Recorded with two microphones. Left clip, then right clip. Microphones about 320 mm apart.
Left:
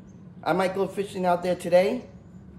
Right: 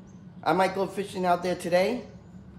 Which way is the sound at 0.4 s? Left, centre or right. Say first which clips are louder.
Even; centre.